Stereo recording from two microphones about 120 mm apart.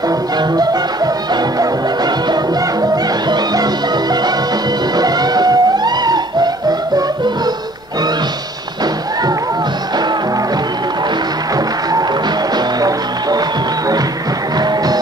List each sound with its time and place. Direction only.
0.4 s music: 35° right (ahead or behind)
2.8 s music: 35° right (ahead or behind)